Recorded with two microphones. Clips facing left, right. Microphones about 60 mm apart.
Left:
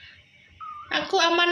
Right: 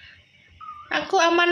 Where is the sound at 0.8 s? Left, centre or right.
Right.